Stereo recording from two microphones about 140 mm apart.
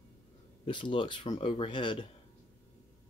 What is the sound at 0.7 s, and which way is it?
Speech, 35° left (ahead or behind).